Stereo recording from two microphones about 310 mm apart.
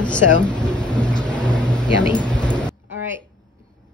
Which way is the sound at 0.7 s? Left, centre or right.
Centre.